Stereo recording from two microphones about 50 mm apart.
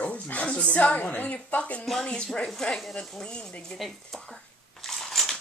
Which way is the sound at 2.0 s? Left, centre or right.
Centre.